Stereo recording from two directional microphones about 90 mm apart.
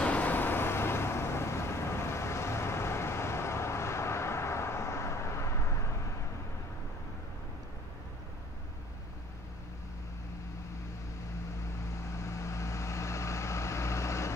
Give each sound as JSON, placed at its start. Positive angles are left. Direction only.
{"t": 0.0, "sound": "vehicle", "side_deg": 15}
{"t": 12.2, "sound": "vehicle", "side_deg": 30}